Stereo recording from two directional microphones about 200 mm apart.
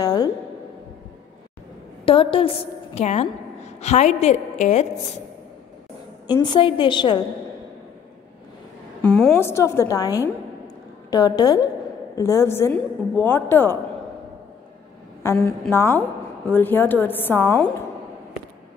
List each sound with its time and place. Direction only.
0.0 s a sound: 20° left (ahead or behind)
2.0 s a woman's voice: 25° left (ahead or behind)
6.2 s a woman's voice: 20° left (ahead or behind)
9.0 s a woman's voice: 5° left (ahead or behind)
15.2 s a woman's voice: 15° left (ahead or behind)